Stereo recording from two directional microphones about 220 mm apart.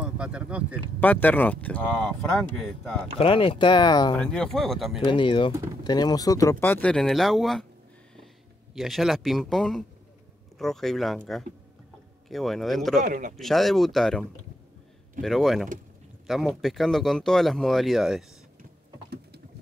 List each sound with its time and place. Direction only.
0.0 s speech: 5° right (ahead or behind)
1.0 s speech: 5° left (ahead or behind)
3.2 s speech: 25° left (ahead or behind)
4.1 s speech: 5° left (ahead or behind)
5.0 s speech: 20° left (ahead or behind); by 7.6 s centre (ahead or behind)
8.7 s speech: centre (ahead or behind)
13.0 s a man's voice: 35° right (ahead or behind)
13.4 s speech: centre (ahead or behind)
15.2 s speech: centre (ahead or behind)
18.6 s a sound: 45° right (ahead or behind)